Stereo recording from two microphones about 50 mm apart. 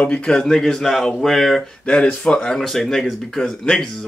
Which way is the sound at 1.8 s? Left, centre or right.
Centre.